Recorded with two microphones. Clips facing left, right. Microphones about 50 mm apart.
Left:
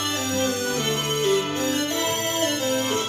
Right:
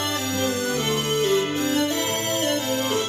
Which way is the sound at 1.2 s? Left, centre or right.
Centre.